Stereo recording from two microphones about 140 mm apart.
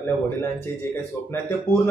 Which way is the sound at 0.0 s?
15° left (ahead or behind).